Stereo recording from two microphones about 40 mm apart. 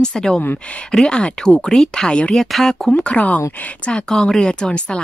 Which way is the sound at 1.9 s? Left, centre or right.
Left.